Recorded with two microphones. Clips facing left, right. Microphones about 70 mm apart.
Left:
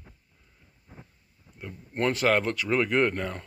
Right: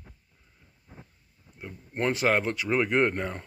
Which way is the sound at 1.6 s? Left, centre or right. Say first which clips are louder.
Left 1 dB; centre.